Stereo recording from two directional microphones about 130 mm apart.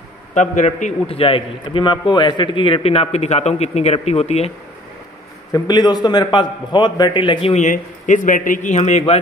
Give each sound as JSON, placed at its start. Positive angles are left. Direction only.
{"t": 0.3, "sound": "speech", "side_deg": 65}
{"t": 1.0, "sound": "a man's voice", "side_deg": 45}
{"t": 5.5, "sound": "a man's voice", "side_deg": 30}
{"t": 7.5, "sound": "speech", "side_deg": 75}